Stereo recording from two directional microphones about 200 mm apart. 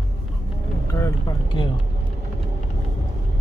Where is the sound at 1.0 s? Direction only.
20° left (ahead or behind).